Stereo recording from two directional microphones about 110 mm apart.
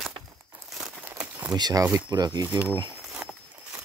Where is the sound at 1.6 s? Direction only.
40° right (ahead or behind).